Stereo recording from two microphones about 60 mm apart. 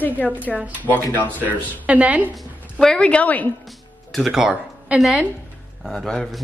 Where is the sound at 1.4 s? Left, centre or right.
Right.